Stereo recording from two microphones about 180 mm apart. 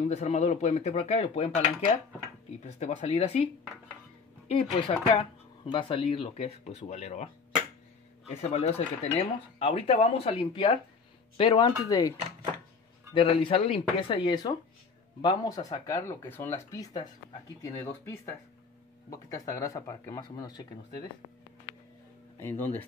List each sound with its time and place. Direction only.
0.0 s speech: 35° left (ahead or behind)
4.7 s speech: 30° left (ahead or behind)
8.4 s speech: 35° left (ahead or behind); by 12.1 s 20° left (ahead or behind)
13.1 s speech: 30° left (ahead or behind)
22.4 s speech: 10° left (ahead or behind)